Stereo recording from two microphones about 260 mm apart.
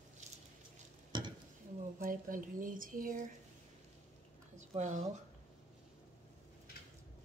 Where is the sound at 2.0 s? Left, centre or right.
Right.